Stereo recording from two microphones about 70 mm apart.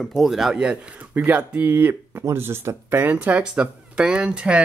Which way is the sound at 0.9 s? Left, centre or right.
Right.